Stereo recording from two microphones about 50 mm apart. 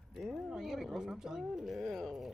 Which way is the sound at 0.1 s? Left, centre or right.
Centre.